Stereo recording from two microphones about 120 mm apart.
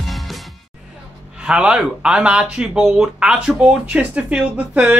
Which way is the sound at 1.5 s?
5° right (ahead or behind).